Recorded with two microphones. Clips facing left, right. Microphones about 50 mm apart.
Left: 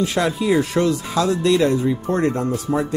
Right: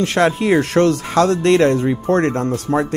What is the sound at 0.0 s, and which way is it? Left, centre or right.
Speech, right.